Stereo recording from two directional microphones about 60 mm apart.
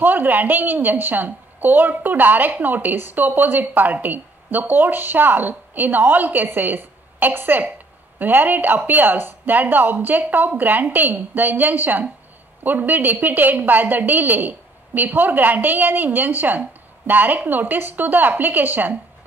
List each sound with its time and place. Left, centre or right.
0.0 s a woman's voice: right